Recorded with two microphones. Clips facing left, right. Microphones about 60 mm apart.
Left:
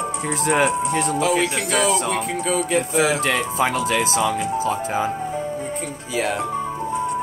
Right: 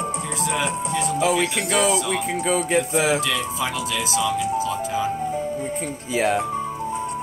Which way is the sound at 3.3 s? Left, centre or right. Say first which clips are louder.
Left 4 dB; left.